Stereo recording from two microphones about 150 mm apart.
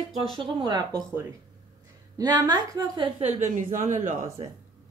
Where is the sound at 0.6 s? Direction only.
25° right (ahead or behind).